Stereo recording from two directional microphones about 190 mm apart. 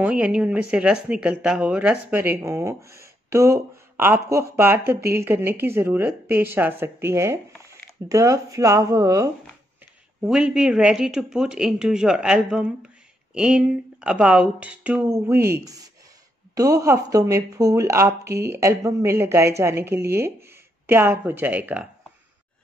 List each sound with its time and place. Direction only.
0.0 s speech: 5° right (ahead or behind)
10.2 s speech: 5° right (ahead or behind)